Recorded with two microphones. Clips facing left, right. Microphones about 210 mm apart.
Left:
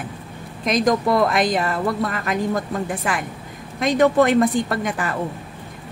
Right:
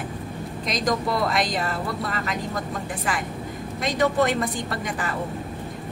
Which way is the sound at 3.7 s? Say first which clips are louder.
Left 6 dB; 55° left (ahead or behind).